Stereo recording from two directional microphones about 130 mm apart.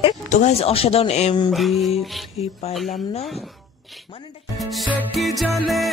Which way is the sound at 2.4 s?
55° left (ahead or behind).